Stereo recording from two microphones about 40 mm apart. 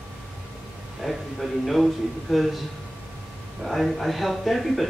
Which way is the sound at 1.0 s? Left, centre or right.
Centre.